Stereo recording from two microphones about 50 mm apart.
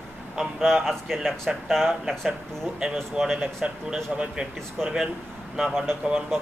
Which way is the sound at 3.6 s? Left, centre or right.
Centre.